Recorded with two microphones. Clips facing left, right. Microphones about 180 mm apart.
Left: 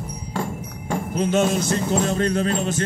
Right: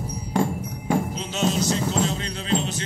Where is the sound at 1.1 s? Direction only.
55° left (ahead or behind).